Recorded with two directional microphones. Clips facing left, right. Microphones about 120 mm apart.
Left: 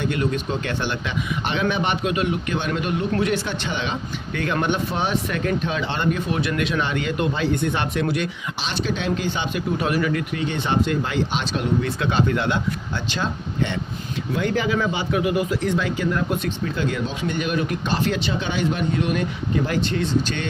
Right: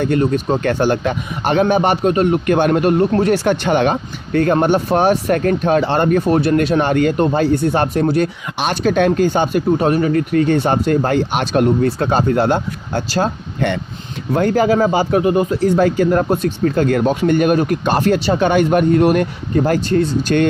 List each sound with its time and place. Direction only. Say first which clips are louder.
0.0 s speech: right 7 dB; 40° right (ahead or behind)
3.1 s speech: right 8 dB; 35° right (ahead or behind)
8.5 s speech: right 12 dB; 55° right (ahead or behind)
9.8 s speech: right 7 dB; 30° right (ahead or behind); by 20.4 s 45° right (ahead or behind)